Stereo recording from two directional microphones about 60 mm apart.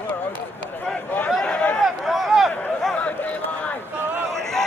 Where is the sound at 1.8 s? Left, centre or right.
Centre.